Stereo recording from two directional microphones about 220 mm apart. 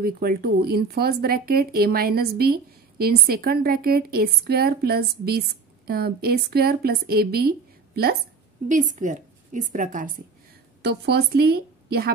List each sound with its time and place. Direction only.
0.0 s a woman's voice: 45° right (ahead or behind)
10.8 s a woman's voice: 50° right (ahead or behind)